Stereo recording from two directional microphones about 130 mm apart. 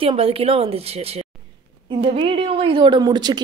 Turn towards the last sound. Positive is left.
turn(degrees=-35)  # may be behind; listen again after turning